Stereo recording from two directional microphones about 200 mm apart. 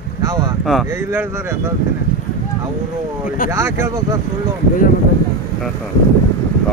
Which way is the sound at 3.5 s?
15° right (ahead or behind).